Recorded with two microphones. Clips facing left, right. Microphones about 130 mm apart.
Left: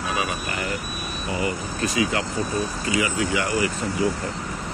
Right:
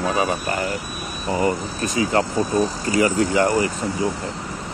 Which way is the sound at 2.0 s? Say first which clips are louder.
Right 6 dB; 40° right (ahead or behind).